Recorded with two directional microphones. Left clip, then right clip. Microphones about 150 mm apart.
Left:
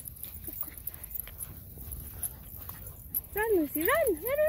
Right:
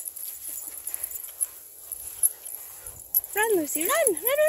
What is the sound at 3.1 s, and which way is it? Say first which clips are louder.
Dog: right 4 dB; 15° right (ahead or behind).